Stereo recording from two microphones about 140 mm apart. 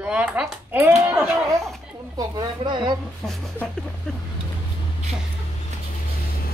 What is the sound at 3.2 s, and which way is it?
Speech, 5° left (ahead or behind).